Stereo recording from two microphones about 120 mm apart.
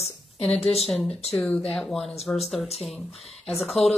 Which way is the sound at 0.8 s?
Centre (ahead or behind).